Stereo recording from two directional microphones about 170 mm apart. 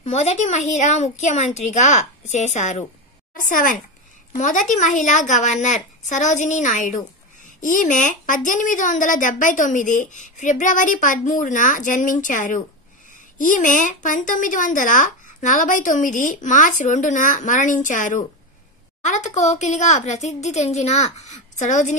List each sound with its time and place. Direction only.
0.0 s a woman's voice: 40° left (ahead or behind)